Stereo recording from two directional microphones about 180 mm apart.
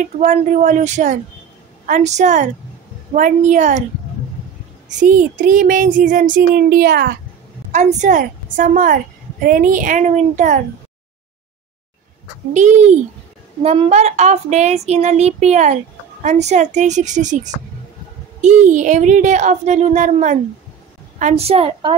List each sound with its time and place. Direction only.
0.0 s a woman's voice: 40° right (ahead or behind)
4.8 s a woman's voice: 45° right (ahead or behind)
7.7 s a woman's voice: 40° right (ahead or behind)
12.5 s speech: 40° right (ahead or behind)